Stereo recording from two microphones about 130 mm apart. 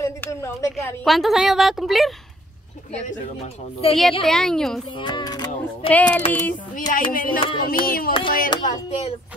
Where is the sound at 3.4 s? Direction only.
45° left (ahead or behind).